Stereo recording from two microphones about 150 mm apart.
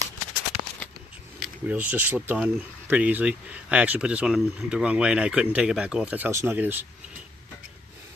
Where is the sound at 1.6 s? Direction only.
10° right (ahead or behind).